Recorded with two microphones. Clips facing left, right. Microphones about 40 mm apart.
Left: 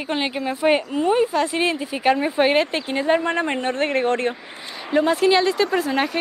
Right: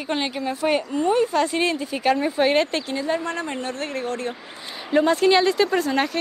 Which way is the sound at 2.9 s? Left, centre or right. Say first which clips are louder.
Left 5 dB; left.